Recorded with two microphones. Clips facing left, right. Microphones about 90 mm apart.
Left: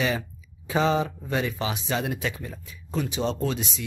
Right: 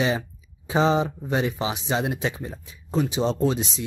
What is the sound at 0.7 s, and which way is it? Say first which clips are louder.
Speech: right 2 dB; 25° right (ahead or behind).